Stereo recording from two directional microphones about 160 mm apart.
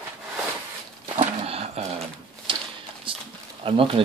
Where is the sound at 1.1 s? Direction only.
40° right (ahead or behind).